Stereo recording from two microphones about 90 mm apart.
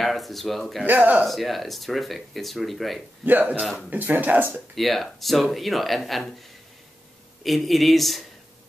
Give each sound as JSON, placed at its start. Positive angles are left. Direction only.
{"t": 0.0, "sound": "speech", "side_deg": 0}
{"t": 0.8, "sound": "speech", "side_deg": -20}
{"t": 1.2, "sound": "speech", "side_deg": 0}
{"t": 3.3, "sound": "speech", "side_deg": -20}
{"t": 3.5, "sound": "speech", "side_deg": 0}
{"t": 3.9, "sound": "speech", "side_deg": -20}
{"t": 4.7, "sound": "speech", "side_deg": 0}
{"t": 7.4, "sound": "speech", "side_deg": 0}